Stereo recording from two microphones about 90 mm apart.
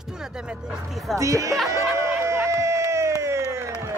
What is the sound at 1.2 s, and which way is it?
Speech, 35° right (ahead or behind).